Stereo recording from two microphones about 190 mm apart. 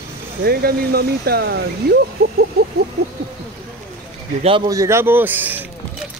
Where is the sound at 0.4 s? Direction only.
55° right (ahead or behind).